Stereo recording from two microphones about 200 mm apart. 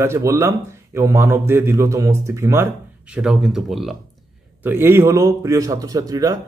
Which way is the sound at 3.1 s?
5° right (ahead or behind).